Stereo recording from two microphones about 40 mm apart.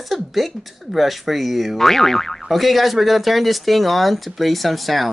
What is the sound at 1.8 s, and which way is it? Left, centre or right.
Boing, centre.